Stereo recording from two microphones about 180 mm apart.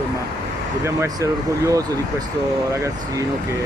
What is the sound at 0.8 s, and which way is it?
Speech, 20° right (ahead or behind).